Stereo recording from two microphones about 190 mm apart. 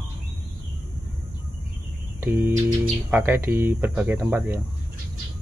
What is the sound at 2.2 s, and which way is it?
Speech, 10° right (ahead or behind).